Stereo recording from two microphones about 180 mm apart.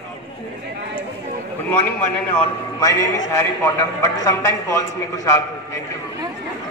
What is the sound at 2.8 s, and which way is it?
A man's voice, 20° left (ahead or behind).